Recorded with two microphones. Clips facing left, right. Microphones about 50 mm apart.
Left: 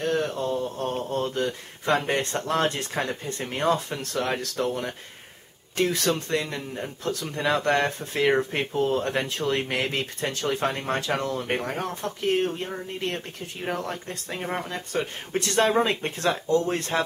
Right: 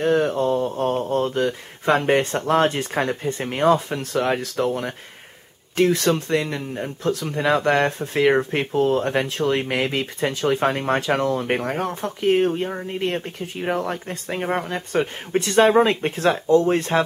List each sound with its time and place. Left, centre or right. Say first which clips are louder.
0.0 s speech: right 7 dB; centre
5.9 s speech: right 5 dB; centre